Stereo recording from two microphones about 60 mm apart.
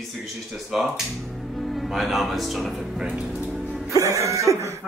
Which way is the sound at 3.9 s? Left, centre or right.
Right.